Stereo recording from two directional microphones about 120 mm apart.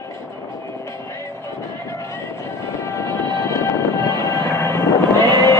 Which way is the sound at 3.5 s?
25° left (ahead or behind).